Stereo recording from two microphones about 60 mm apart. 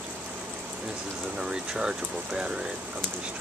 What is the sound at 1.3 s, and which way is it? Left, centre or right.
Speech, centre.